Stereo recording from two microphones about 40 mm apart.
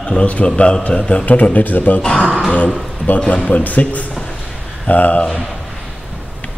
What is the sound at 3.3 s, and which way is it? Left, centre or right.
A man's voice, left.